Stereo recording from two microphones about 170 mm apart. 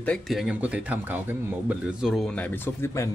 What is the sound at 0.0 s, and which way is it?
Speech, 5° left (ahead or behind).